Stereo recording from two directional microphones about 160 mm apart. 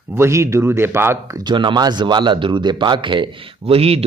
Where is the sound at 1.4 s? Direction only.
30° right (ahead or behind).